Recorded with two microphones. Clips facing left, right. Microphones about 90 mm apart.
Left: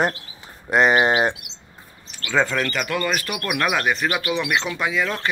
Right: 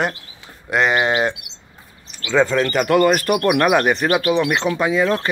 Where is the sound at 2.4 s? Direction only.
25° right (ahead or behind).